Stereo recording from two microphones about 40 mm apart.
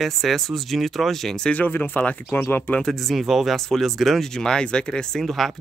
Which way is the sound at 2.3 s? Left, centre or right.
Left.